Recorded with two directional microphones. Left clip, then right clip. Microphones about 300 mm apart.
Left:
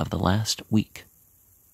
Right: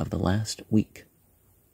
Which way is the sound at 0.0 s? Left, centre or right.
Centre.